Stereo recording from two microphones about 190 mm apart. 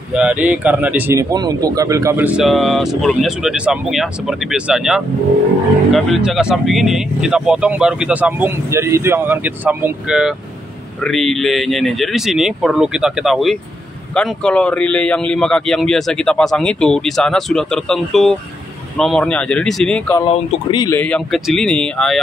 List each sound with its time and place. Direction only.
0.1 s speech: 5° right (ahead or behind)
20.2 s speech: 30° left (ahead or behind)
20.8 s speech: 10° left (ahead or behind)